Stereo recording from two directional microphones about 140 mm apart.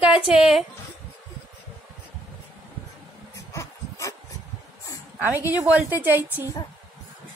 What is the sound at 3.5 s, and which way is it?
Dog, 20° left (ahead or behind).